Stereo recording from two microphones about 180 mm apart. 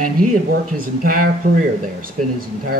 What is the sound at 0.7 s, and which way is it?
Speech, 55° right (ahead or behind).